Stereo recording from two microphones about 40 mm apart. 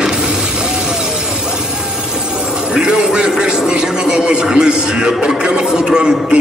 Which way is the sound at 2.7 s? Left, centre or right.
Centre.